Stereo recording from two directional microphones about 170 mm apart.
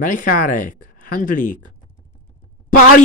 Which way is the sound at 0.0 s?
50° left (ahead or behind).